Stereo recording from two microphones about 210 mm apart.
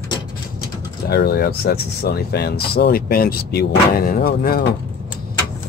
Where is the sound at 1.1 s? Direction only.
50° left (ahead or behind).